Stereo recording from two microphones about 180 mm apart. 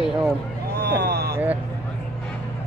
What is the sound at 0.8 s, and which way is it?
Vehicle, 65° right (ahead or behind).